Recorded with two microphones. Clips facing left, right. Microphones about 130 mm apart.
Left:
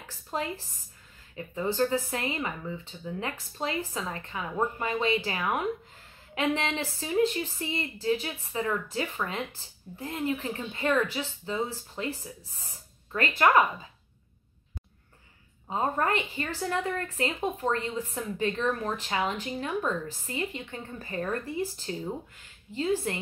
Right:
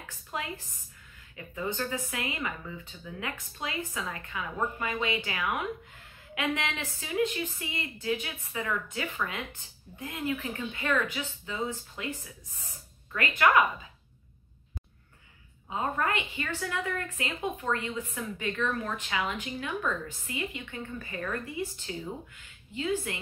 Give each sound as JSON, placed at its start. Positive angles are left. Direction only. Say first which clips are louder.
{"t": 0.3, "sound": "speech", "louder": "left 4 dB", "side_deg": 35}
{"t": 15.7, "sound": "a woman's voice", "louder": "left 3 dB", "side_deg": 35}